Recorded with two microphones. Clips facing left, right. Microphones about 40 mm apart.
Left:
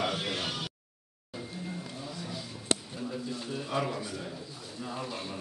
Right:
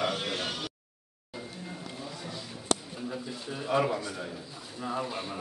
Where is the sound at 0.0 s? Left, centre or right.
Centre.